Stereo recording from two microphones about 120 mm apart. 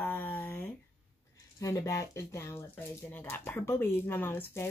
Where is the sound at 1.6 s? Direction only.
25° left (ahead or behind).